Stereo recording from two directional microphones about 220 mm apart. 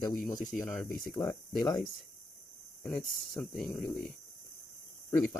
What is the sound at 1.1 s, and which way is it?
Speech, 15° left (ahead or behind).